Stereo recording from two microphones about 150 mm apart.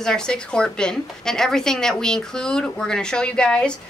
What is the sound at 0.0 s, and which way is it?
A woman's voice, 5° left (ahead or behind).